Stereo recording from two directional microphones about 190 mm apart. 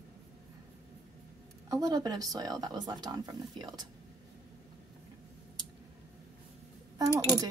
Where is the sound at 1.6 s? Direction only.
20° right (ahead or behind).